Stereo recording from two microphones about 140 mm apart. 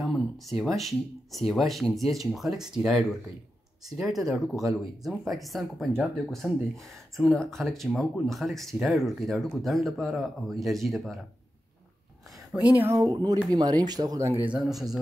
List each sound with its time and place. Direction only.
0.0 s speech: centre (ahead or behind)
12.5 s speech: 10° right (ahead or behind)
12.9 s speech: 30° right (ahead or behind)
14.4 s speech: 5° right (ahead or behind)